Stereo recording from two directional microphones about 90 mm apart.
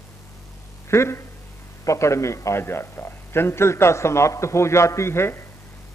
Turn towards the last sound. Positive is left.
turn(degrees=30)  # may be behind; listen again after turning